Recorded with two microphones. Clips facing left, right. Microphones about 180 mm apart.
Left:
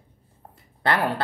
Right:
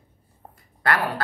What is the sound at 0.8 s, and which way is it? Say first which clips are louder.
Speech: left 1 dB; 25° left (ahead or behind).